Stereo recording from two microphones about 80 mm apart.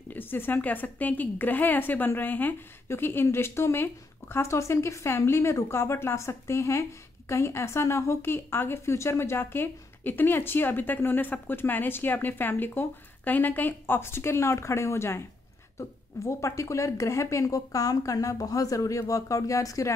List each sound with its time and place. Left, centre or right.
0.1 s a woman's voice: left